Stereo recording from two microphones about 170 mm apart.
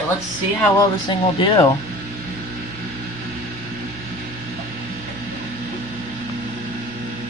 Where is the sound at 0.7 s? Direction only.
25° left (ahead or behind).